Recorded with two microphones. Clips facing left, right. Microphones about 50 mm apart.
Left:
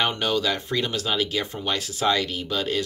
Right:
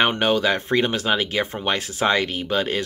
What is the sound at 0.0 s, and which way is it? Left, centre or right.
Speech, right.